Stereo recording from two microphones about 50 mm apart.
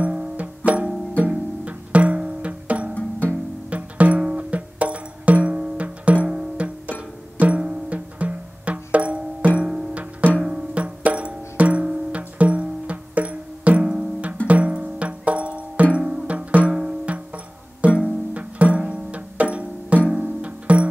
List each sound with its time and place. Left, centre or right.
0.0 s music: right
9.6 s music: centre
9.9 s music: right